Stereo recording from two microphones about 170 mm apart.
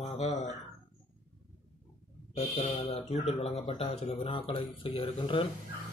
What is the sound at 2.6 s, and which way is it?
A man's voice, 35° left (ahead or behind).